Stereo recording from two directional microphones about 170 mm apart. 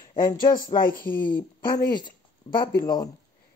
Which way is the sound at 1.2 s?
25° left (ahead or behind).